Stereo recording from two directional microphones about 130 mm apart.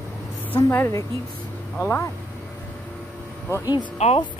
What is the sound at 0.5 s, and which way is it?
A woman's voice, 20° left (ahead or behind).